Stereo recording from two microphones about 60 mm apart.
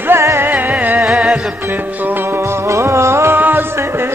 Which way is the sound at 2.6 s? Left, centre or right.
Right.